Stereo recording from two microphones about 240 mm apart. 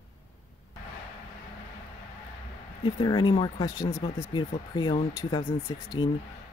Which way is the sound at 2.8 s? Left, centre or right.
Centre.